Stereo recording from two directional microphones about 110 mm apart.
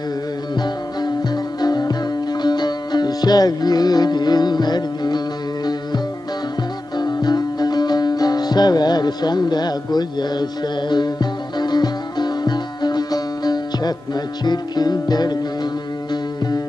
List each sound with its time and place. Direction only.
0.6 s music: 40° left (ahead or behind)
7.0 s music: 40° left (ahead or behind)